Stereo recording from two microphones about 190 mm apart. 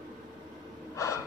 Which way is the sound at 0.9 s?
15° left (ahead or behind).